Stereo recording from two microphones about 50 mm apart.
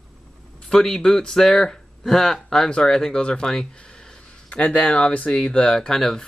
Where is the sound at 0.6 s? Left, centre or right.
Centre.